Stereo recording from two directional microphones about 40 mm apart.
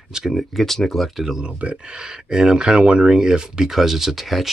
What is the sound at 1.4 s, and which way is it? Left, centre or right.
Speech, right.